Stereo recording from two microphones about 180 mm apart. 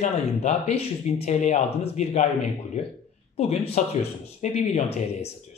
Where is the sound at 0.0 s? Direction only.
40° left (ahead or behind).